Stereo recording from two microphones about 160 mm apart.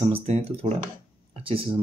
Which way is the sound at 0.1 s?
40° right (ahead or behind).